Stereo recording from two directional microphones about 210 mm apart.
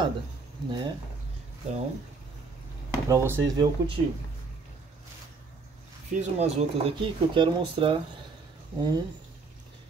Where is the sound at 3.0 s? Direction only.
10° right (ahead or behind).